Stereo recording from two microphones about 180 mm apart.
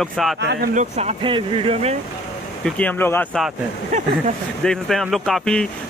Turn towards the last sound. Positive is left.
turn(degrees=5)  # may be behind; listen again after turning